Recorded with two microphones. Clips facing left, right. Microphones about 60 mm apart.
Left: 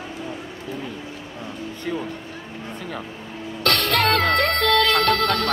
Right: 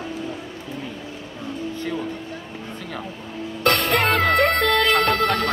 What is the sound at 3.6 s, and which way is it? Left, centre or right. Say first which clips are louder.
Music: right 1 dB; centre.